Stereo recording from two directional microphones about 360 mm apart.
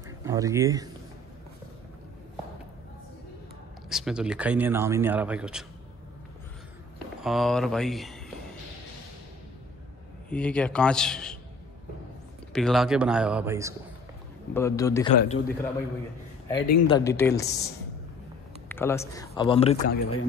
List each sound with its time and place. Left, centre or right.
0.2 s speech: centre
3.9 s a man's voice: centre
7.2 s a man's voice: centre
10.3 s a man's voice: centre
12.5 s a man's voice: centre
14.5 s speech: centre
15.1 s a man's voice: left
16.8 s speech: centre
20.0 s speech: left